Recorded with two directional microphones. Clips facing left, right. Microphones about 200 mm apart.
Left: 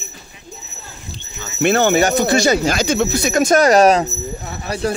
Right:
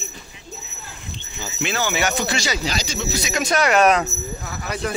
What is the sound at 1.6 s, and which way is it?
Speech, 55° left (ahead or behind).